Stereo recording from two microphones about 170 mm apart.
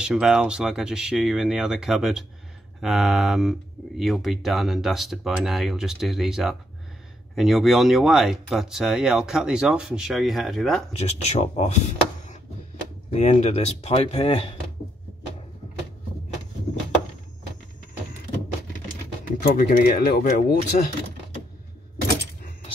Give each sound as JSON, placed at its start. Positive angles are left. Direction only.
{"t": 0.0, "sound": "speech", "side_deg": -5}
{"t": 10.9, "sound": "speech", "side_deg": 40}
{"t": 13.1, "sound": "speech", "side_deg": 40}
{"t": 19.4, "sound": "speech", "side_deg": 55}